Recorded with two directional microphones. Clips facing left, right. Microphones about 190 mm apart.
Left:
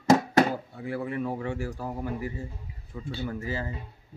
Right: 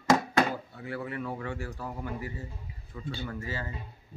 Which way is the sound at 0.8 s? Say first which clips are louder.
Left 5 dB; 25° left (ahead or behind).